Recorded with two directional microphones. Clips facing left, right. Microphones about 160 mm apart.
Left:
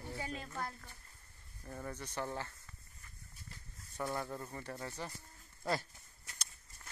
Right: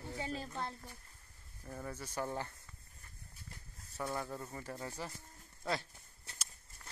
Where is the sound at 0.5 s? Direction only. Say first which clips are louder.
Right 1 dB; 15° right (ahead or behind).